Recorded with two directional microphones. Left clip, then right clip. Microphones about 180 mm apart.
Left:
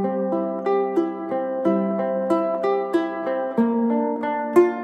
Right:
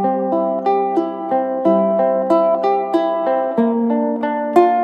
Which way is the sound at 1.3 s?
25° right (ahead or behind).